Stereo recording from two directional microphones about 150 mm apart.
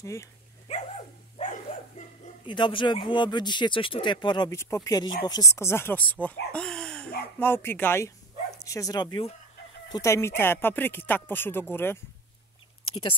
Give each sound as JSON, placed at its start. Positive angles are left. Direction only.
{"t": 0.0, "sound": "speech", "side_deg": 20}
{"t": 0.7, "sound": "dog", "side_deg": 50}
{"t": 2.0, "sound": "bow-wow", "side_deg": 55}
{"t": 2.4, "sound": "speech", "side_deg": 30}